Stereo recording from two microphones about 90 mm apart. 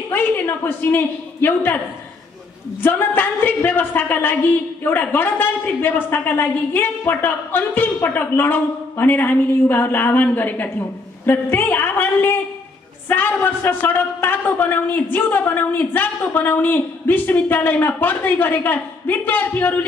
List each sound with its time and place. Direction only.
0.1 s a man's voice: 20° left (ahead or behind)
2.8 s a woman's voice: 20° left (ahead or behind)